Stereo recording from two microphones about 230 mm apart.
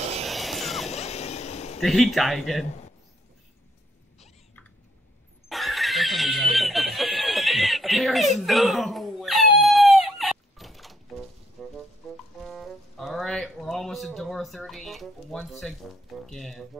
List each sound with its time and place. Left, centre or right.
0.3 s vehicle: centre
0.8 s a sound: left
1.8 s speech: centre
5.5 s snicker: centre
11.6 s music: centre
16.3 s speech: centre